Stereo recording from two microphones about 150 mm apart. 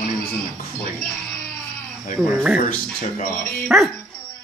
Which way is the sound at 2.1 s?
10° right (ahead or behind).